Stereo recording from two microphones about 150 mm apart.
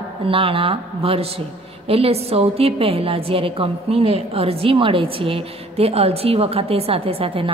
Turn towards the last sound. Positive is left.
turn(degrees=-40)  # may be behind; listen again after turning